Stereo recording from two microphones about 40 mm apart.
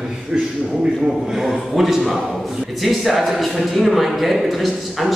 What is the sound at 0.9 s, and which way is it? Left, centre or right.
A man's voice, centre.